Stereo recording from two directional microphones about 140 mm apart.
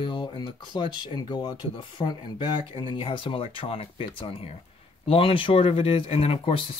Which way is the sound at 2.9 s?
40° left (ahead or behind).